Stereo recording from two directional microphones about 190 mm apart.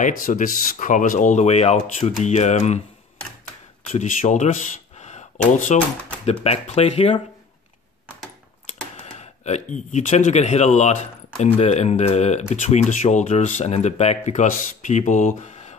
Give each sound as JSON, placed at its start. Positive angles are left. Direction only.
{"t": 0.2, "sound": "speech", "side_deg": 45}
{"t": 3.8, "sound": "speech", "side_deg": 40}
{"t": 8.6, "sound": "a sound", "side_deg": 35}
{"t": 9.9, "sound": "speech", "side_deg": 40}